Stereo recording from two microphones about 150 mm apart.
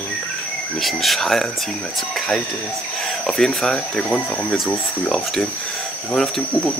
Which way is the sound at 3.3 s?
Centre (ahead or behind).